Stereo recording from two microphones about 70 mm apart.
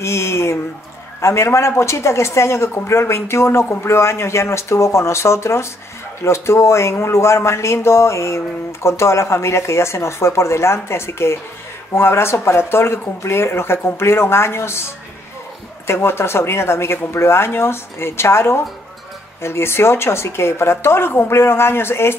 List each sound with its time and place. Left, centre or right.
0.0 s speech: left
15.9 s speech: left